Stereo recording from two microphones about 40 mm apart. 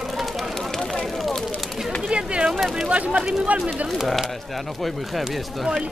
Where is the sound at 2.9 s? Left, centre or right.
Right.